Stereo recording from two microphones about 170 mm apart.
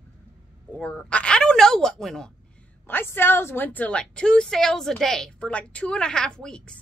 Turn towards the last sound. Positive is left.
turn(degrees=5)  # may be behind; listen again after turning